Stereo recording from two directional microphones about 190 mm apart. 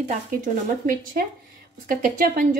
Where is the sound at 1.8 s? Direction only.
45° right (ahead or behind).